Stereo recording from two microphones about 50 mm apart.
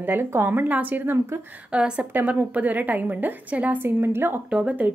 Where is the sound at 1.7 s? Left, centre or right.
Right.